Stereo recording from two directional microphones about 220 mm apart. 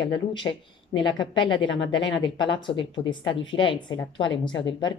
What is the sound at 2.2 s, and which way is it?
A woman's voice, 20° left (ahead or behind).